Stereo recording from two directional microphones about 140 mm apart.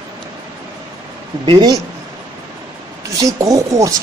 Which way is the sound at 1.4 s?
30° right (ahead or behind).